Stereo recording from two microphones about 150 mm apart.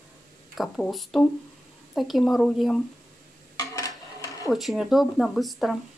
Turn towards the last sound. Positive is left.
turn(degrees=0)  # may be behind; listen again after turning